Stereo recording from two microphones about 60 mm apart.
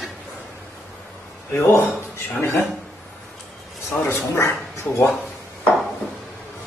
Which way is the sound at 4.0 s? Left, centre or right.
Left.